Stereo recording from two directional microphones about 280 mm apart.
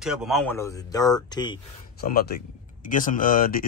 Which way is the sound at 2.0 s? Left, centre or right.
Left.